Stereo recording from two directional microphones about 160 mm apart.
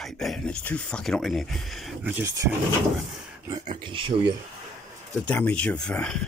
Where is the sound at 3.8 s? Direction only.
30° right (ahead or behind).